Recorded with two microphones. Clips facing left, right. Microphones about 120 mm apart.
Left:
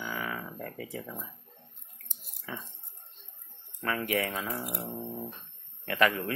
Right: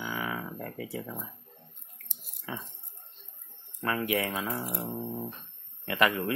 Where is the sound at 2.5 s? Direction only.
10° right (ahead or behind).